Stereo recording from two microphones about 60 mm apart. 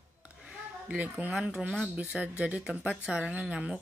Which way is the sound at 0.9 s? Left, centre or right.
Right.